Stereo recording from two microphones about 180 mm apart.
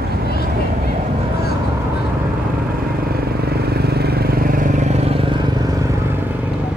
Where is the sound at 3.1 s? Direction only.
60° right (ahead or behind); by 5.9 s 20° right (ahead or behind).